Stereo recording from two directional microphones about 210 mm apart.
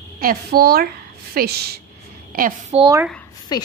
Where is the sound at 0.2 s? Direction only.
45° right (ahead or behind).